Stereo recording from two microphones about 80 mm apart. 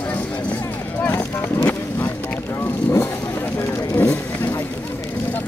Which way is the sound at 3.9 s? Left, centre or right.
Left.